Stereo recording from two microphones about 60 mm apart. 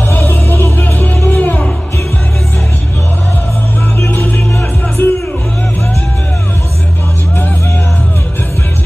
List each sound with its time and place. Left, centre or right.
0.1 s music: left
4.2 s music: left